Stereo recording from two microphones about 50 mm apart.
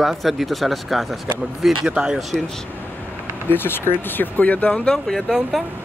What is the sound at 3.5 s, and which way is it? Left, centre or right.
Speech, left.